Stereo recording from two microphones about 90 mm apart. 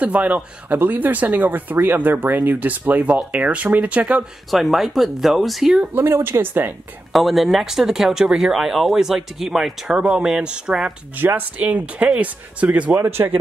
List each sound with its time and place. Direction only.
0.0 s speech: 15° right (ahead or behind)
5.9 s speech: 25° right (ahead or behind)
7.1 s speech: centre (ahead or behind); by 13.4 s 25° right (ahead or behind)